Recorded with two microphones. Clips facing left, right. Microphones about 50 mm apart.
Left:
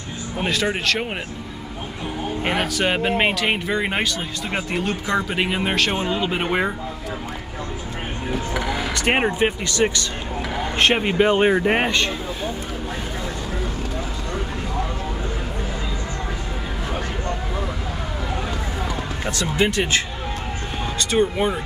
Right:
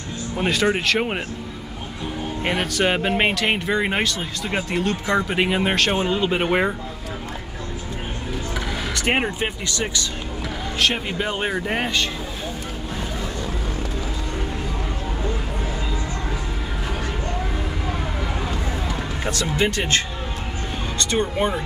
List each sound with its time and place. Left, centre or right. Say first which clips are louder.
0.4 s speech: right 2 dB; centre
2.6 s speech: right 2 dB; centre
8.5 s vehicle: left 2 dB; left
9.4 s speech: left 6 dB; centre; by 11.9 s left
21.0 s speech: left 2 dB; centre